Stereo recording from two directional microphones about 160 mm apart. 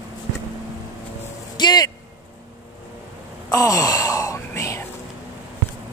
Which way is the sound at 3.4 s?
20° left (ahead or behind).